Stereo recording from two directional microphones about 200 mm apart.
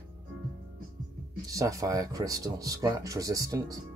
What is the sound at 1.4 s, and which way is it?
Speech, 15° right (ahead or behind).